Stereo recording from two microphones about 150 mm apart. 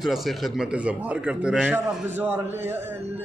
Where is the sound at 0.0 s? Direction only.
Centre (ahead or behind).